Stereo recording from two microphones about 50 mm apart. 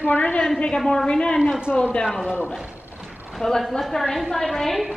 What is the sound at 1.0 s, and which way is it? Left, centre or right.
A woman's voice, centre.